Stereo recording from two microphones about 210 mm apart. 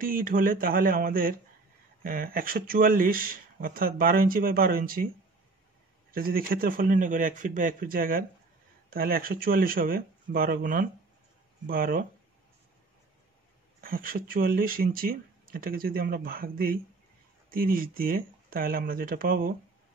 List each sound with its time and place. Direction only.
0.0 s a man's voice: 40° right (ahead or behind)
6.1 s a man's voice: 45° right (ahead or behind)
13.7 s speech: 45° right (ahead or behind)